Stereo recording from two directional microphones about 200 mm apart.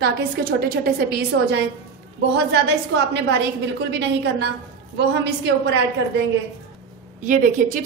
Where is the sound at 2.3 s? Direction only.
60° right (ahead or behind).